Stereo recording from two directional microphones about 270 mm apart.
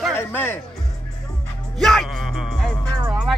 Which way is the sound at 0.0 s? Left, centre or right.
Centre.